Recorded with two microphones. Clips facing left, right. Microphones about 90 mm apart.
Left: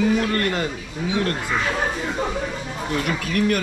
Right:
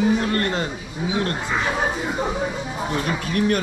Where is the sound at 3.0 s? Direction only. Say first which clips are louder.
Left 1 dB; 25° right (ahead or behind).